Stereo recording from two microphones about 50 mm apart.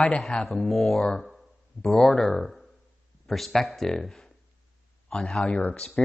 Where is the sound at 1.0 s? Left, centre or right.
Centre.